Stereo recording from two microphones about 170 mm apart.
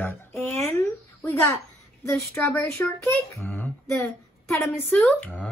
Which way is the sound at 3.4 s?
10° left (ahead or behind).